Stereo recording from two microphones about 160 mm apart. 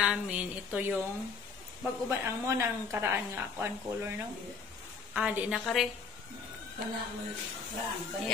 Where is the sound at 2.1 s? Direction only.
15° right (ahead or behind).